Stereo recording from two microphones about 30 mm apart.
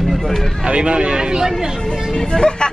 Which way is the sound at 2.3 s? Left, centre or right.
Left.